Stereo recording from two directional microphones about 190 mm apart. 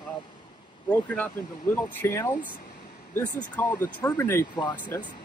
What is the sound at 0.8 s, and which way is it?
Speech, 10° left (ahead or behind).